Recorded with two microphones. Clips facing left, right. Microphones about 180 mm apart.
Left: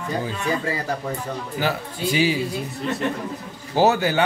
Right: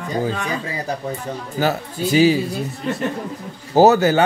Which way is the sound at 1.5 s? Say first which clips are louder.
Right 5 dB; 40° right (ahead or behind).